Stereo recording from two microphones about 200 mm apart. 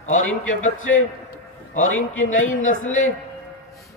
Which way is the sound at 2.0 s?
85° left.